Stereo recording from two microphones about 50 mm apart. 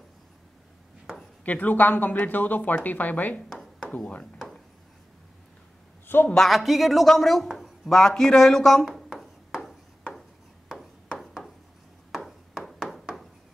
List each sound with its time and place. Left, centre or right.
1.4 s speech: left
6.1 s a man's voice: left
6.5 s a woman's voice: centre
12.1 s a sound: centre